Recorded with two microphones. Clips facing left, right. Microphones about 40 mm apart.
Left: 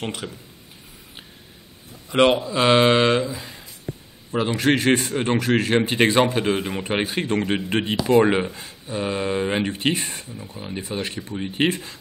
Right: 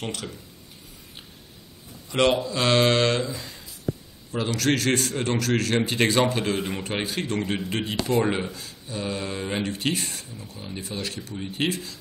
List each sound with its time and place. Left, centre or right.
0.0 s speech: centre
2.0 s speech: centre